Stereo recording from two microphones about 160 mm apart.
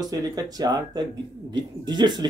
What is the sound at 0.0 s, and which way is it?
Speech, 25° right (ahead or behind).